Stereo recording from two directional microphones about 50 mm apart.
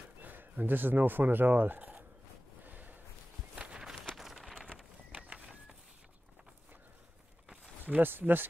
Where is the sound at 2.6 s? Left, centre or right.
Right.